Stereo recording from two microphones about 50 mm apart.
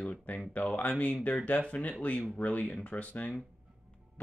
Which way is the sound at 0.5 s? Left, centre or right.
Left.